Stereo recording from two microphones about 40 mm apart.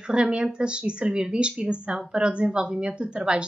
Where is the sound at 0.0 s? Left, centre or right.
Right.